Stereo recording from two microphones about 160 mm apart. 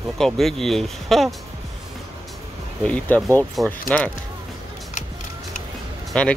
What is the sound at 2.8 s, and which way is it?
Speech, 10° left (ahead or behind).